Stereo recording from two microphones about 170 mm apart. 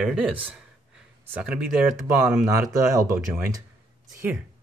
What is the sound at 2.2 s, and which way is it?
Speech, 15° right (ahead or behind).